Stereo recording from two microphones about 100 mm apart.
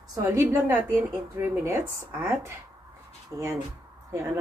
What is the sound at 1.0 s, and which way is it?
A woman's voice, 25° right (ahead or behind).